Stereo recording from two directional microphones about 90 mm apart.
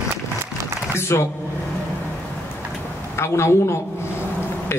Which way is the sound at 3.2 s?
30° left (ahead or behind).